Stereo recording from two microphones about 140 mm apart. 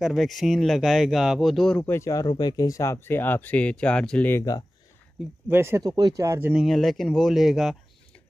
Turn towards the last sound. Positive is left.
turn(degrees=0)  # may be behind; listen again after turning